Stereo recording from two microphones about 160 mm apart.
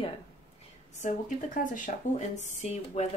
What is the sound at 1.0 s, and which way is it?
Speech, 55° left (ahead or behind).